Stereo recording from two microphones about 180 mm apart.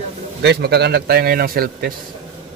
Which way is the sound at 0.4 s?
65° right (ahead or behind).